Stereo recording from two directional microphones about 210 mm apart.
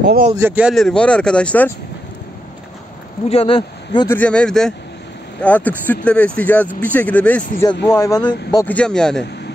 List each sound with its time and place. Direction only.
0.0 s a man's voice: 45° right (ahead or behind)
0.4 s speech: 10° right (ahead or behind)
3.3 s speech: 25° left (ahead or behind)
4.1 s speech: 5° left (ahead or behind); by 8.6 s 20° left (ahead or behind)
8.6 s speech: 5° left (ahead or behind)